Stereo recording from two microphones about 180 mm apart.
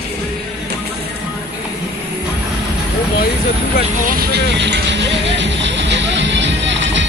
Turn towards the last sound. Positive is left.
turn(degrees=-85)